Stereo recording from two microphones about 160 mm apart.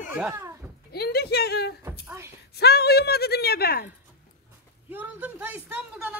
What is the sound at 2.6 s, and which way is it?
A woman's voice, 85° left.